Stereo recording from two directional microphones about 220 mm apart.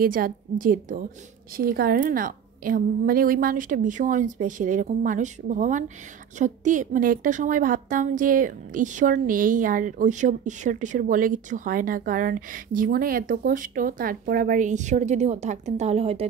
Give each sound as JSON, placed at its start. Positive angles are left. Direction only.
{"t": 0.0, "sound": "a woman's voice", "side_deg": -40}